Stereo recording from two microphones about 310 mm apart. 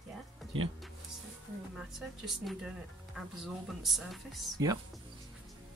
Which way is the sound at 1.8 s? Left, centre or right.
Centre.